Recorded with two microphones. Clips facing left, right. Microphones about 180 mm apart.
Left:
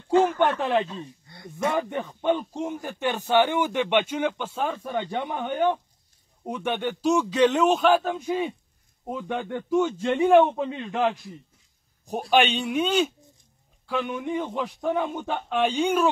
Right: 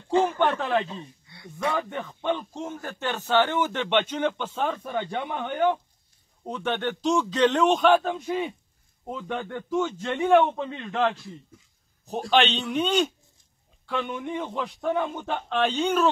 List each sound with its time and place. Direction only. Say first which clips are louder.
0.4 s a man's voice: left 1 dB; 15° left (ahead or behind)
1.2 s a sound: left 3 dB; 45° left (ahead or behind)
1.7 s a man's voice: left 2 dB; 15° left (ahead or behind)